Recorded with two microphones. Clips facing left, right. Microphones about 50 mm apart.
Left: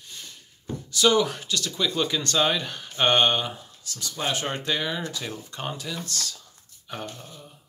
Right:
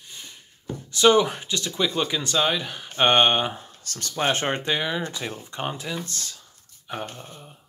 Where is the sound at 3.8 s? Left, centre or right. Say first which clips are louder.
Right 5 dB; right.